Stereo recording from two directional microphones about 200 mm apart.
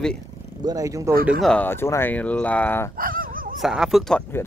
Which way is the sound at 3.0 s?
45° right (ahead or behind).